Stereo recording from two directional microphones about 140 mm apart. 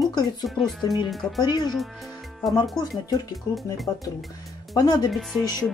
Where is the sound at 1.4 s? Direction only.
30° left (ahead or behind).